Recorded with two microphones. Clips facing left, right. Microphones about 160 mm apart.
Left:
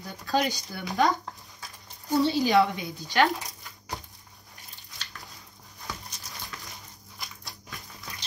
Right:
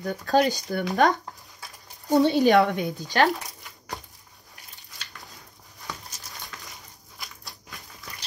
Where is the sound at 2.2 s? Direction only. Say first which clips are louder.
Right 3 dB; 65° right (ahead or behind); by 3.3 s 45° right (ahead or behind).